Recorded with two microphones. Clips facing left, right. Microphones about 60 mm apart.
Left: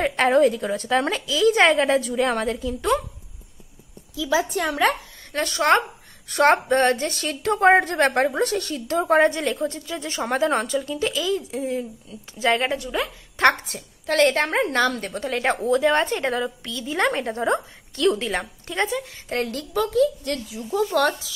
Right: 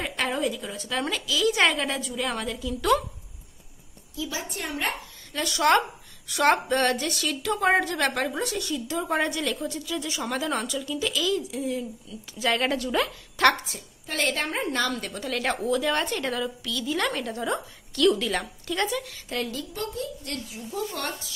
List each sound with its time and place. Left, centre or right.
0.0 s a woman's voice: left
4.1 s a child's voice: left
5.3 s a woman's voice: left
8.3 s a woman's voice: left; by 13.1 s centre
13.7 s a woman's voice: left
15.2 s a woman's voice: left
19.2 s a woman's voice: left
19.9 s a child's voice: left